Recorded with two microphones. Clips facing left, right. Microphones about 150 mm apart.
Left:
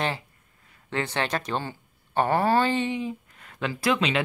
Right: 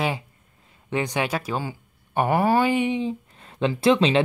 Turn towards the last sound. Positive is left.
turn(degrees=-30)  # may be behind; listen again after turning